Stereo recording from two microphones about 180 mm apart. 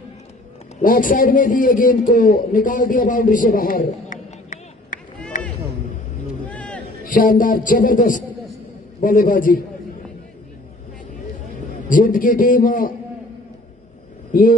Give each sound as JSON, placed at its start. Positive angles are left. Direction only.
{"t": 0.8, "sound": "a man's voice", "side_deg": 50}
{"t": 6.5, "sound": "a sound", "side_deg": 10}
{"t": 7.1, "sound": "speech", "side_deg": 50}
{"t": 11.9, "sound": "speech", "side_deg": 50}